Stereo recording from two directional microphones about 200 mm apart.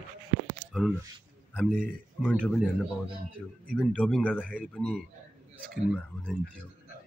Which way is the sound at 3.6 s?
5° left (ahead or behind).